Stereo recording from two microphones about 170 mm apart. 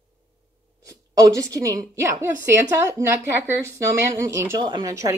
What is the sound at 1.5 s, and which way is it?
A woman's voice, 20° right (ahead or behind).